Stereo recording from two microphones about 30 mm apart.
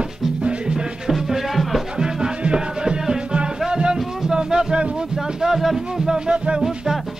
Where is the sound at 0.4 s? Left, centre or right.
Right.